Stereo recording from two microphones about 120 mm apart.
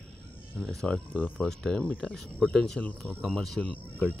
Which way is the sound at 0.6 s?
Centre (ahead or behind).